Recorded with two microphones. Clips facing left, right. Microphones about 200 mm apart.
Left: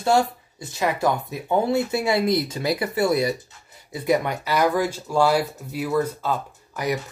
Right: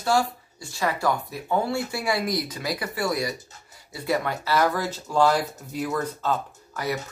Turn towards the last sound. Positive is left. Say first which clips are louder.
# left 3 dB
turn(degrees=15)  # may be behind; listen again after turning